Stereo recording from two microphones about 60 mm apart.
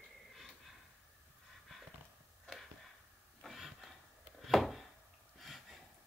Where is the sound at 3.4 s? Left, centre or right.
Centre.